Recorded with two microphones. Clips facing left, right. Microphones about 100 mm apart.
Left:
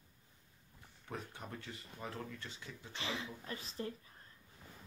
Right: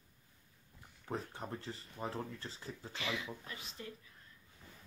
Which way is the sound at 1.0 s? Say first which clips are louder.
Right 5 dB; 35° right (ahead or behind).